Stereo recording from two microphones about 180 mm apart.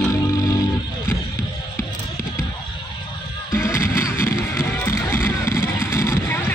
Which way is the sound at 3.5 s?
15° left (ahead or behind).